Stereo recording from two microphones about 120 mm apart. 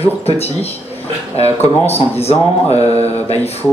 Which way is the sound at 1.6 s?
60° left (ahead or behind).